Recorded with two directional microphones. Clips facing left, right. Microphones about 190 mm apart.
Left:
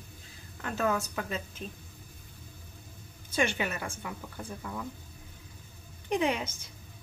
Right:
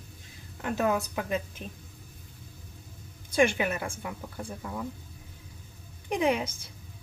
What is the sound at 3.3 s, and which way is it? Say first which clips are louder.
Speech: right 5 dB; 15° right (ahead or behind).